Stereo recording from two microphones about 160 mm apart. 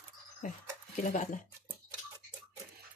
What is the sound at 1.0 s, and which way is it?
Speech, 50° left (ahead or behind).